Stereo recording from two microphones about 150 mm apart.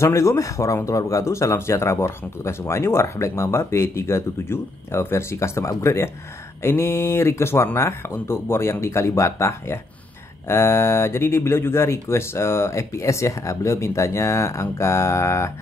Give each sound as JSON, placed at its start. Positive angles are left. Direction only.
{"t": 0.0, "sound": "speech", "side_deg": 20}